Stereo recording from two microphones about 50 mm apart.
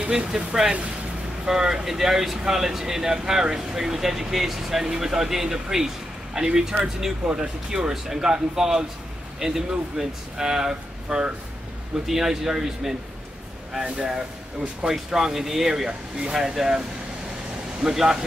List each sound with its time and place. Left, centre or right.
0.0 s speech: right
17.8 s speech: centre